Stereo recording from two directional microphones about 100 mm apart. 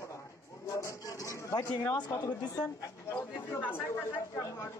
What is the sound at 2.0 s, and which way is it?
Speech, 45° left (ahead or behind).